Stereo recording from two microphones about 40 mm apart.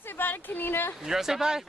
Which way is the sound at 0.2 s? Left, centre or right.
Left.